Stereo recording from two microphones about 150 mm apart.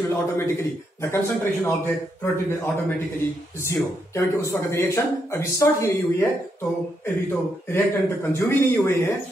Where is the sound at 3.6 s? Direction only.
15° left (ahead or behind).